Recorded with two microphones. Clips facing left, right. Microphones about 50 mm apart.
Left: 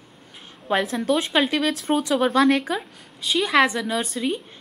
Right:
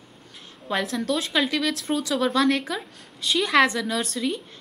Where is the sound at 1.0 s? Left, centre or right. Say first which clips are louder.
Left 3 dB; left.